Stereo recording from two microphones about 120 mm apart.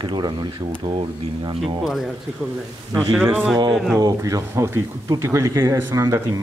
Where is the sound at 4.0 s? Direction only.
30° right (ahead or behind).